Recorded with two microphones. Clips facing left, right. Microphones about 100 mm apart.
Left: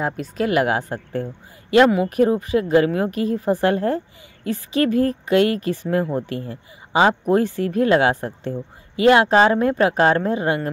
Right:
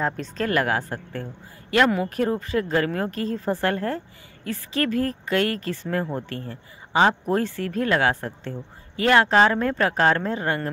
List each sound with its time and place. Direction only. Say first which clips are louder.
0.0 s speech: left 3 dB; 10° left (ahead or behind)